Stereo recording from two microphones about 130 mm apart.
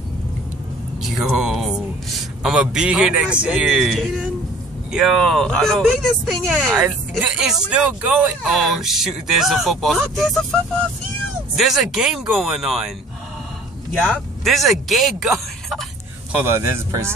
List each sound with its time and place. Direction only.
1.0 s speech: 5° right (ahead or behind)
14.4 s speech: centre (ahead or behind)
16.3 s speech: 20° right (ahead or behind)